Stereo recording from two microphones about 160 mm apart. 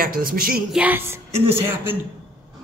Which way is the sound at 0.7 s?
10° right (ahead or behind).